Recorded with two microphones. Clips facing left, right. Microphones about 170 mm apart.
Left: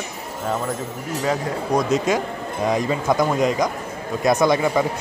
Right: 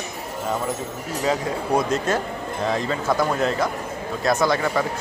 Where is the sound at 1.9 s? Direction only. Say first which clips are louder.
Left 3 dB; 10° left (ahead or behind).